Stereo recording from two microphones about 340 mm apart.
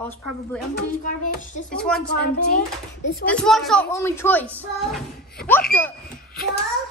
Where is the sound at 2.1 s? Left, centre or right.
Left.